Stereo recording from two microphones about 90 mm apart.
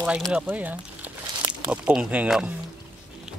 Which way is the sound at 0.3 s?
15° right (ahead or behind).